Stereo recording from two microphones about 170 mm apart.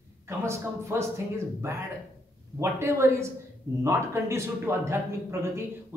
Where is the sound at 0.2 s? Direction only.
15° right (ahead or behind).